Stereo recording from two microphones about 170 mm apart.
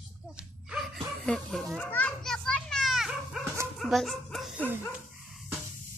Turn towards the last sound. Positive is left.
turn(degrees=0)  # may be behind; listen again after turning